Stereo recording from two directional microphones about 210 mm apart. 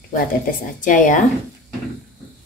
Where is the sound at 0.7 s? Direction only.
40° left (ahead or behind).